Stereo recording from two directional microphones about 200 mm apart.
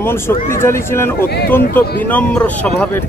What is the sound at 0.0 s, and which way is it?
Speech, 10° left (ahead or behind).